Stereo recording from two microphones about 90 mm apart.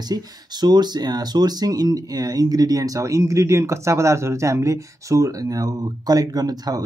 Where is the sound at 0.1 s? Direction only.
50° right (ahead or behind).